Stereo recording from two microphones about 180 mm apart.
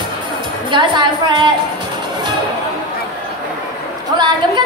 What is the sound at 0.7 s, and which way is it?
Music, 25° right (ahead or behind).